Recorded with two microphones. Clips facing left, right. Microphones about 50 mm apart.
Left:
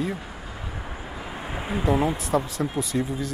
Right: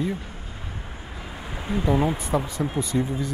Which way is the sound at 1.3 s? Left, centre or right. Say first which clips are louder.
Right 1 dB; left.